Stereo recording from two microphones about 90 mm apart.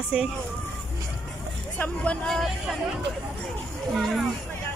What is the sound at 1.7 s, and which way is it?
Speech, 15° left (ahead or behind).